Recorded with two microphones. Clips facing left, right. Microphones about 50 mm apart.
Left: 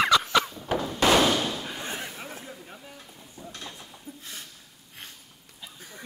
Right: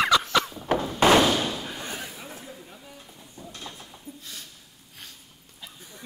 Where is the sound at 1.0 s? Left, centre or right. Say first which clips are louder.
Right 3 dB; centre.